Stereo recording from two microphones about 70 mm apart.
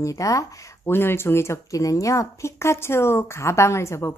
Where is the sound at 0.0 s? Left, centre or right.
Left.